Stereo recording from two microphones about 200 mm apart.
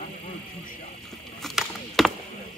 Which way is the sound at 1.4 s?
Centre (ahead or behind).